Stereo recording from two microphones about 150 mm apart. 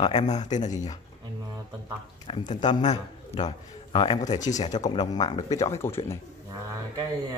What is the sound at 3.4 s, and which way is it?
Speech, 30° left (ahead or behind).